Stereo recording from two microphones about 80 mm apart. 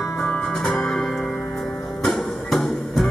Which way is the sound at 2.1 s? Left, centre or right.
Centre.